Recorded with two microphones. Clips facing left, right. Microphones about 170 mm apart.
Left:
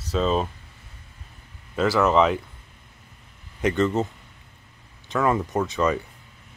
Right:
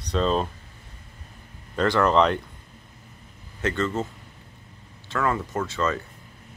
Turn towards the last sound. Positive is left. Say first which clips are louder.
# left 3 dB
turn(degrees=15)  # may be behind; listen again after turning